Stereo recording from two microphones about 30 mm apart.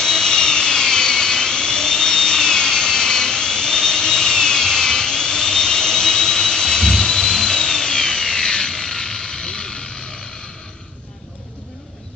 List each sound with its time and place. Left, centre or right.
0.0 s jet engine: left